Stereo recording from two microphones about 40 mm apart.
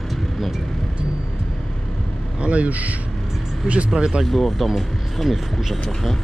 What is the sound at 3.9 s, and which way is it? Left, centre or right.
Speech, centre.